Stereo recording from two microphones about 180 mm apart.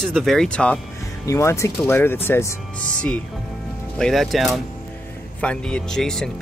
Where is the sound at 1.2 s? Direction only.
15° left (ahead or behind).